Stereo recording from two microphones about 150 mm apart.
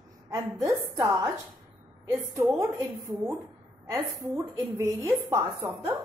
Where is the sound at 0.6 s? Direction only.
20° right (ahead or behind).